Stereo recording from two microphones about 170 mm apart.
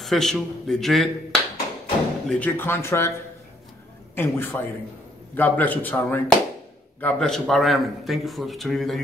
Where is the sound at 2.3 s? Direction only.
10° left (ahead or behind).